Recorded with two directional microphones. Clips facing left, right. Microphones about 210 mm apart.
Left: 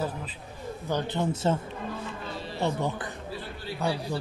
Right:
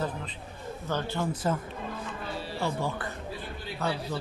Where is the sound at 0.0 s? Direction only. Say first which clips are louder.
Left 1 dB; 5° left (ahead or behind).